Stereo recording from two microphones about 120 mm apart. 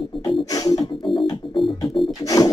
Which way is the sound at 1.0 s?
45° left (ahead or behind).